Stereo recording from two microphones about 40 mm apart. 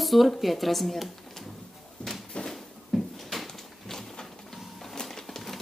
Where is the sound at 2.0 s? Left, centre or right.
Left.